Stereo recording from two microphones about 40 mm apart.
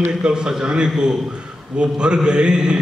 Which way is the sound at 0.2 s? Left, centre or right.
Centre.